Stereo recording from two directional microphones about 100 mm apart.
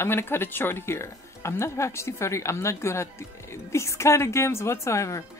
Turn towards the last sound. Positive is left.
turn(degrees=30)  # may be behind; listen again after turning